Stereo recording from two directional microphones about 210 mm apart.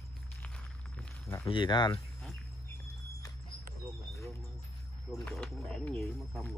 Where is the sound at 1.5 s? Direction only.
20° left (ahead or behind).